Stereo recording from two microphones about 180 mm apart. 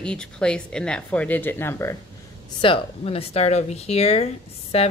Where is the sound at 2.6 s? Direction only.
30° left (ahead or behind).